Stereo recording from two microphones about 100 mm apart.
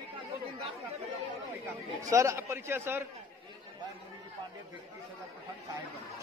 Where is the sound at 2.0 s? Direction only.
30° right (ahead or behind).